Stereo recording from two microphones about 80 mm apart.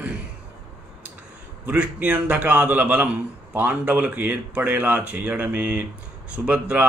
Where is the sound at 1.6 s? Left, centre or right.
Centre.